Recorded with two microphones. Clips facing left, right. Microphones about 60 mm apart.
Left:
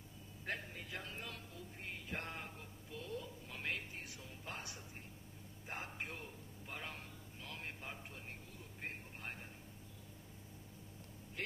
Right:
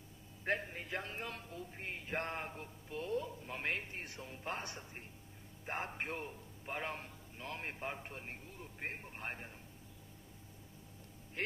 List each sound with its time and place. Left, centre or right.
0.5 s a man's voice: right
8.8 s radio: right
11.4 s speech: right